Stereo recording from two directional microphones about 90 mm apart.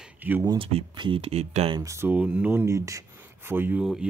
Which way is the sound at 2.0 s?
15° right (ahead or behind).